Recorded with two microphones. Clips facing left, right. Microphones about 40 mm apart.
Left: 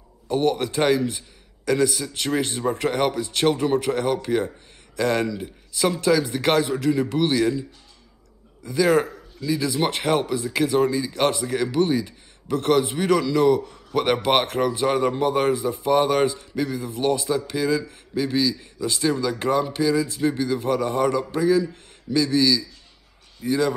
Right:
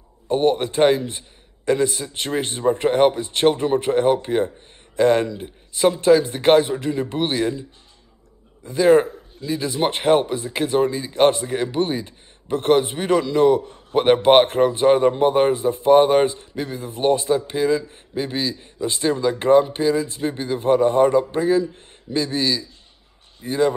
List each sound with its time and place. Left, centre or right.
0.3 s a man's voice: right
8.6 s a man's voice: right